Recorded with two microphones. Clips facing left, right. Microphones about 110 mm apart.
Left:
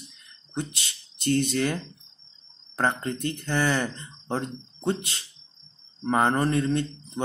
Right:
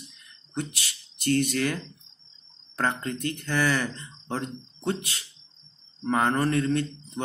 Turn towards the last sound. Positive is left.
turn(degrees=25)  # may be behind; listen again after turning